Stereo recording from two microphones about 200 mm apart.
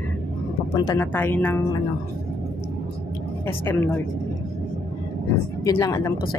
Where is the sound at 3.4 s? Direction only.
10° left (ahead or behind).